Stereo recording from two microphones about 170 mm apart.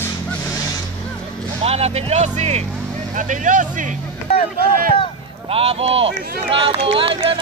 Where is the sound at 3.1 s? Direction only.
50° right (ahead or behind).